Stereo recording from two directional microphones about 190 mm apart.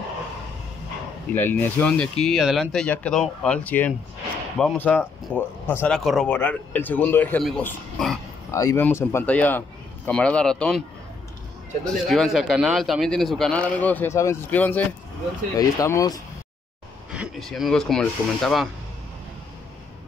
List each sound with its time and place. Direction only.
1.3 s a man's voice: 10° left (ahead or behind)
8.5 s speech: 15° left (ahead or behind)
11.8 s a man's voice: centre (ahead or behind); by 16.2 s 20° left (ahead or behind)
17.1 s a man's voice: centre (ahead or behind)